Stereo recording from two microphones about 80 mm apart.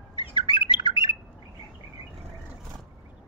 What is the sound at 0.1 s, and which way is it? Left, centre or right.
Bird, left.